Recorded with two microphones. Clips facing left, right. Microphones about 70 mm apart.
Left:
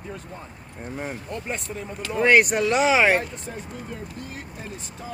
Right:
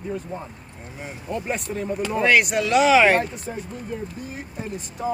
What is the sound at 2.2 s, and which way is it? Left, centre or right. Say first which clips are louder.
Speech: left 2 dB; left.